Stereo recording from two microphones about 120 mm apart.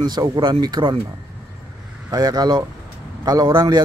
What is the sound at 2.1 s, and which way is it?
Speech, 35° right (ahead or behind).